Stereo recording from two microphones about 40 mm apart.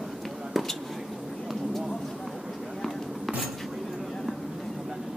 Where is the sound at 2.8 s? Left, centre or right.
Centre.